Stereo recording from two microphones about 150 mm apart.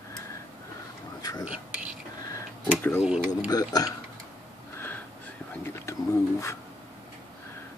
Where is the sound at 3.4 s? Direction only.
25° left (ahead or behind).